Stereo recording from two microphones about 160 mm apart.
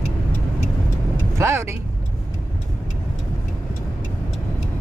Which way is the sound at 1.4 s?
15° right (ahead or behind).